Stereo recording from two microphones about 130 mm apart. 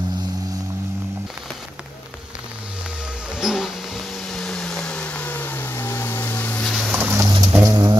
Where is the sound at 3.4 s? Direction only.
5° right (ahead or behind).